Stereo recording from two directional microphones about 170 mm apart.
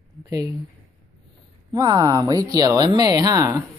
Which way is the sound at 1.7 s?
20° right (ahead or behind).